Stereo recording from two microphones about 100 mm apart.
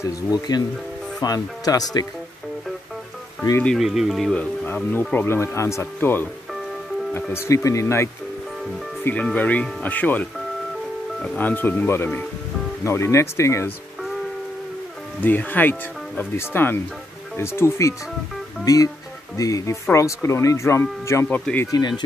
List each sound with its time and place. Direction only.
0.0 s speech: 40° left (ahead or behind)
3.7 s speech: 5° right (ahead or behind)
5.1 s speech: 25° left (ahead or behind)
9.0 s speech: 15° left (ahead or behind)
11.2 s speech: 15° left (ahead or behind)
15.1 s speech: 20° left (ahead or behind)
21.3 s speech: 15° left (ahead or behind)
21.6 s speech: 45° left (ahead or behind)